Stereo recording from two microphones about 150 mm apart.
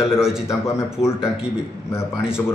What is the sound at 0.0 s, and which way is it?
Speech, 5° right (ahead or behind).